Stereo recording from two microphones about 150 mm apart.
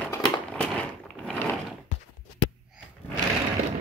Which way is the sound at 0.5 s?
5° left (ahead or behind).